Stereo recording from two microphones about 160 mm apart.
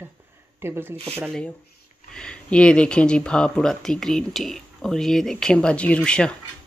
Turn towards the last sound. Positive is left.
turn(degrees=5)  # may be behind; listen again after turning